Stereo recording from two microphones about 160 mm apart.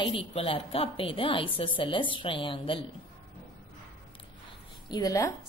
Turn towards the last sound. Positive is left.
turn(degrees=20)  # may be behind; listen again after turning